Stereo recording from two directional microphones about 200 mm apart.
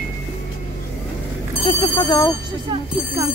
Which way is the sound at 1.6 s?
25° left (ahead or behind).